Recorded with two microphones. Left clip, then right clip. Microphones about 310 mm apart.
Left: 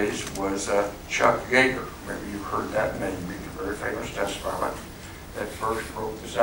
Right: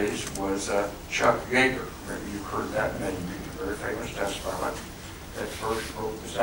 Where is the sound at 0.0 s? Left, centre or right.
Centre.